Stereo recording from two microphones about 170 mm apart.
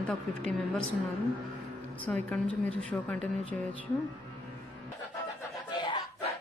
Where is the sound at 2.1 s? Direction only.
5° left (ahead or behind).